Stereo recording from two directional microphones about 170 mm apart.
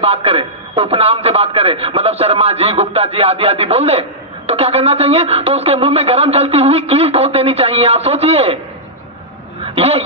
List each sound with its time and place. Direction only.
0.0 s speech: 35° right (ahead or behind)
9.8 s speech: 35° right (ahead or behind)